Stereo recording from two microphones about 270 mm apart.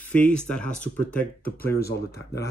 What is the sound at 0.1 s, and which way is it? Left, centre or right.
Speech, centre.